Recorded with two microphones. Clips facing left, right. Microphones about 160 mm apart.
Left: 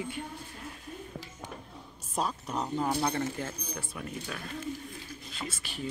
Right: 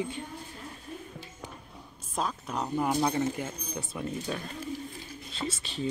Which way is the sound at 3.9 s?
25° right (ahead or behind).